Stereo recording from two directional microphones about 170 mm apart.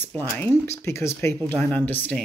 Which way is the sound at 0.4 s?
10° left (ahead or behind).